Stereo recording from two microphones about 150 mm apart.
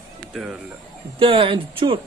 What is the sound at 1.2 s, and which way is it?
Speech, 35° right (ahead or behind).